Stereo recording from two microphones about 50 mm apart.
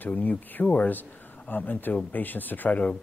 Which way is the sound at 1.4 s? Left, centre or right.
Left.